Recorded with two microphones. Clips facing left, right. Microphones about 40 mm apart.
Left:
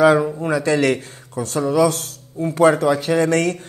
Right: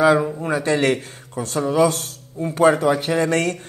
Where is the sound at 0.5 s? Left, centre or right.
Right.